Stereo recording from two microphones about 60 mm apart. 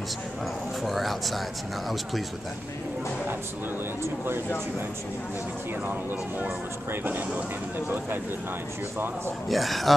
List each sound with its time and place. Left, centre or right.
0.8 s speech: centre
6.9 s speech: right
9.5 s speech: centre